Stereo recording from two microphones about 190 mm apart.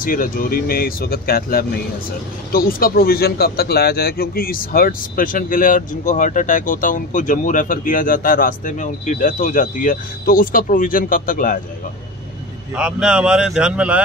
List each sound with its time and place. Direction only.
0.0 s a man's voice: 45° left (ahead or behind)
12.7 s speech: 5° right (ahead or behind)